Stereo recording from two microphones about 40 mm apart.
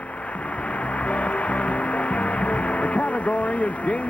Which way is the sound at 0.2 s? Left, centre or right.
Left.